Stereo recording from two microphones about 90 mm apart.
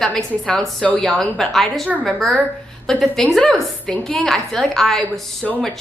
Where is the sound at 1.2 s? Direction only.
5° left (ahead or behind).